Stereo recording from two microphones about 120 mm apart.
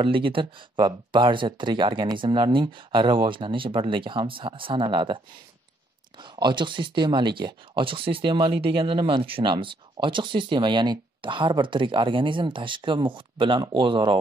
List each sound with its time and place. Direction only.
0.0 s speech: 45° right (ahead or behind)